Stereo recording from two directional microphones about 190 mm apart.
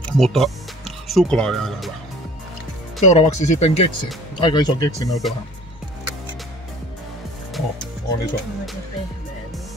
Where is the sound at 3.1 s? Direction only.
35° left (ahead or behind).